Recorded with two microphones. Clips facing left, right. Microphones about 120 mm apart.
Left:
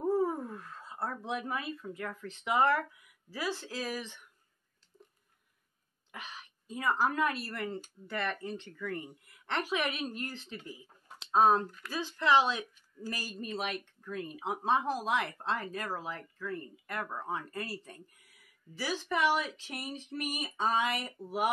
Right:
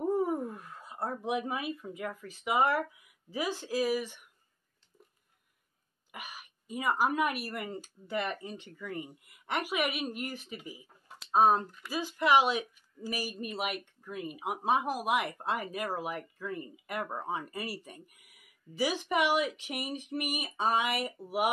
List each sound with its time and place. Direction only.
0.0 s a sound: 15° right (ahead or behind)
1.5 s a woman's voice: 15° right (ahead or behind)
6.1 s a woman's voice: 10° right (ahead or behind)